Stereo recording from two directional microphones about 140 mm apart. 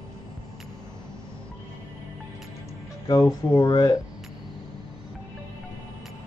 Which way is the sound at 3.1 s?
25° left (ahead or behind).